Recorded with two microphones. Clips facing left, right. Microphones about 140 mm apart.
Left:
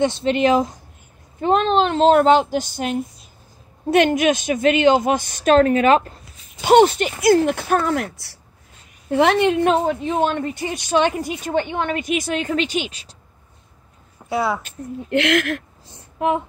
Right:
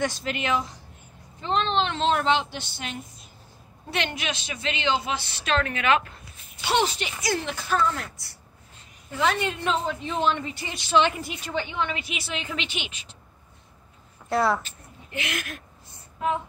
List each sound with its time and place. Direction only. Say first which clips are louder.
0.0 s a woman's voice: left 11 dB; 25° left (ahead or behind)
6.6 s a woman's voice: left 12 dB; 50° left (ahead or behind)
14.3 s speech: left 1 dB; 5° left (ahead or behind)
14.6 s a woman's voice: left 16 dB; 70° left (ahead or behind)